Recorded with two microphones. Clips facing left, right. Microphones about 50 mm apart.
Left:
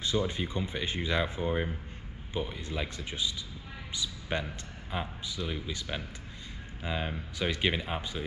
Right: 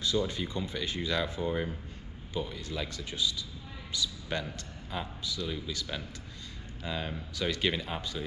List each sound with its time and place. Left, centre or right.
0.0 s a man's voice: left